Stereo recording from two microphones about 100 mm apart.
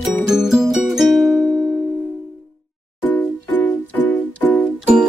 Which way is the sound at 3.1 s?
15° left (ahead or behind).